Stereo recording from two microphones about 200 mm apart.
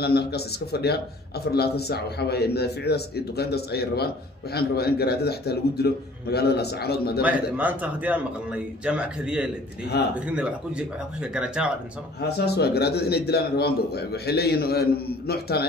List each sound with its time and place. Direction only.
0.0 s a man's voice: 55° left (ahead or behind)
7.5 s speech: 10° right (ahead or behind)
12.2 s a man's voice: 55° left (ahead or behind)